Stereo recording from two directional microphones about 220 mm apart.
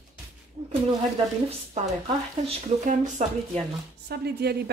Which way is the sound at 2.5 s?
35° right (ahead or behind).